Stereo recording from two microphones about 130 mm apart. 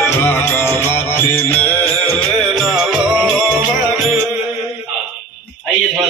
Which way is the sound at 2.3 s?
5° left (ahead or behind).